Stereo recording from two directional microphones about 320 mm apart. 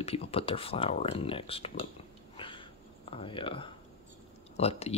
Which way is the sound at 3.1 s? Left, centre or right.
Centre.